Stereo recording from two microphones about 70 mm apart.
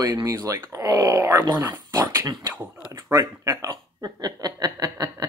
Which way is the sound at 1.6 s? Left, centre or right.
Right.